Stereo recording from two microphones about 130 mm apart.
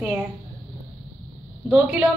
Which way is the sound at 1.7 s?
10° right (ahead or behind).